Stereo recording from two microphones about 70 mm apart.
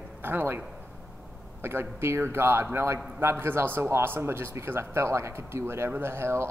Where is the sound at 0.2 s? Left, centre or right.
Right.